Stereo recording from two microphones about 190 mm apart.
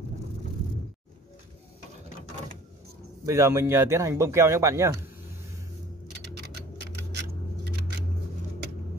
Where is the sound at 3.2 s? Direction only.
15° right (ahead or behind).